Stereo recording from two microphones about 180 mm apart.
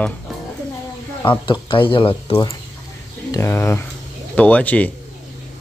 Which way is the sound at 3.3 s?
15° left (ahead or behind).